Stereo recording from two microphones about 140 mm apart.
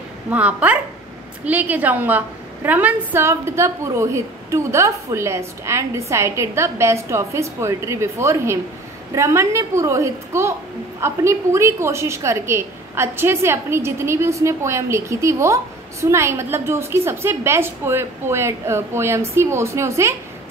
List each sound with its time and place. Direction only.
0.3 s a woman's voice: 10° right (ahead or behind)